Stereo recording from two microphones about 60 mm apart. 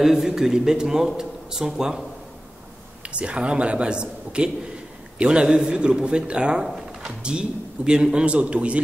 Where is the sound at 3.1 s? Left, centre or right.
Centre.